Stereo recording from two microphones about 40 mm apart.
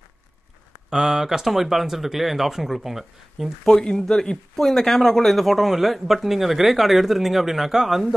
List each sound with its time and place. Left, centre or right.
0.8 s speech: centre
3.6 s speech: centre